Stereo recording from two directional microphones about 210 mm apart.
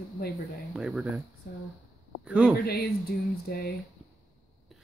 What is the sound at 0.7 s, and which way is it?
Speech, centre (ahead or behind).